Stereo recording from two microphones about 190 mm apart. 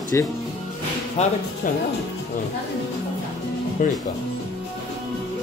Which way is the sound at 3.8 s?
40° left (ahead or behind).